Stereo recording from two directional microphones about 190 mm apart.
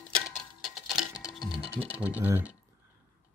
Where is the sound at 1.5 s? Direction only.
5° right (ahead or behind).